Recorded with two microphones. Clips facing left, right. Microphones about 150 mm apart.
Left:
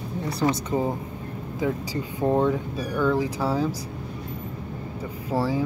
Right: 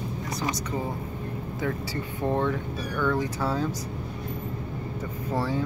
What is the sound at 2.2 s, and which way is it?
Speech, 10° left (ahead or behind).